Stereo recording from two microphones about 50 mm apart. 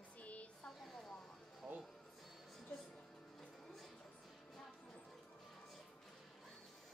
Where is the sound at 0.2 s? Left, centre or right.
Left.